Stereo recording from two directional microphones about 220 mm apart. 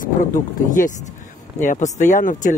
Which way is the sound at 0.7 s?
35° left (ahead or behind).